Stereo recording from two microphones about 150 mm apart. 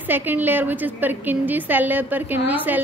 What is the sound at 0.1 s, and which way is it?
A woman's voice, 15° right (ahead or behind).